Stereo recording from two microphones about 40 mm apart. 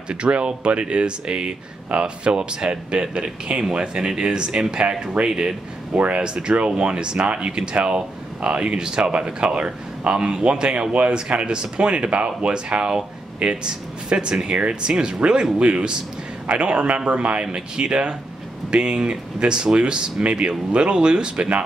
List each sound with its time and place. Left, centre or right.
0.1 s speech: right
5.9 s speech: right